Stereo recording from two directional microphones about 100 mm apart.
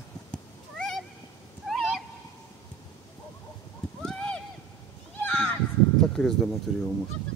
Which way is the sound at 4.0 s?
10° left (ahead or behind).